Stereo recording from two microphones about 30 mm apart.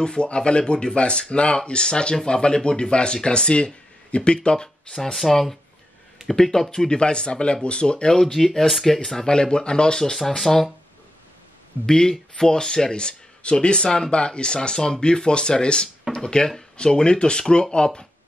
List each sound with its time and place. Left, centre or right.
0.0 s speech: left
5.1 s speech: centre
9.2 s speech: left
10.1 s speech: centre
11.8 s speech: left
12.9 s speech: left